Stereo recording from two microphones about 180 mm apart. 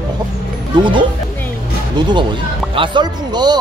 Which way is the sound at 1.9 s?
25° right (ahead or behind).